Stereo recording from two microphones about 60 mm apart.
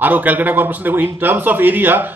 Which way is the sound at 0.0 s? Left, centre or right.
Right.